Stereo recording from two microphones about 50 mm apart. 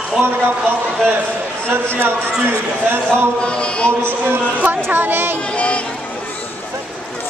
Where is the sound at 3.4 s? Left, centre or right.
Left.